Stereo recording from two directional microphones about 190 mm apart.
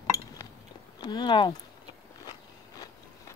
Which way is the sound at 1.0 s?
20° left (ahead or behind).